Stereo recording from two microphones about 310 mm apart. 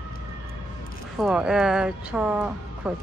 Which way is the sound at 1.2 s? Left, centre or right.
Centre.